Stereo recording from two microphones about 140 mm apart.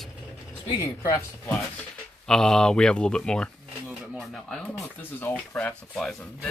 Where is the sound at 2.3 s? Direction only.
5° left (ahead or behind).